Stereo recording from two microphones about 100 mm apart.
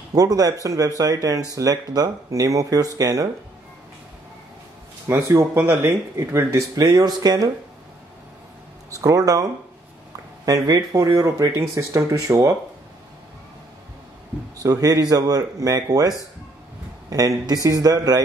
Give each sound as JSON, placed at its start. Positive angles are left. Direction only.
{"t": 0.1, "sound": "speech", "side_deg": -40}
{"t": 5.3, "sound": "speech", "side_deg": -35}
{"t": 6.7, "sound": "speech", "side_deg": -40}
{"t": 9.0, "sound": "speech", "side_deg": -35}
{"t": 14.6, "sound": "speech", "side_deg": -40}